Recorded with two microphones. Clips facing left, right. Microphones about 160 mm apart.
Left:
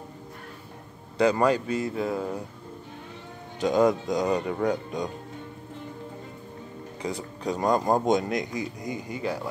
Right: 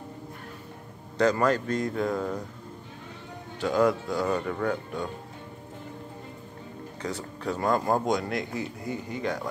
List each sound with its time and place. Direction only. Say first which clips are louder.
1.3 s speech: left 2 dB; 10° left (ahead or behind)
3.6 s speech: left 2 dB; 20° left (ahead or behind)
7.0 s speech: left 2 dB; 10° left (ahead or behind)